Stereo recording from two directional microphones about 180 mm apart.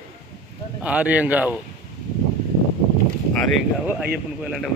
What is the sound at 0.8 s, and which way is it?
Speech, 5° right (ahead or behind).